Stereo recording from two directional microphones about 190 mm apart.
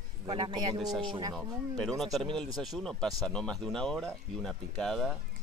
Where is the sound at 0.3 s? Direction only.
25° right (ahead or behind).